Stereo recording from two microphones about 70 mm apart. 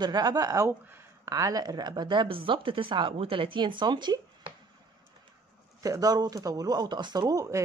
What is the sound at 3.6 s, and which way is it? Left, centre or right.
Speech, right.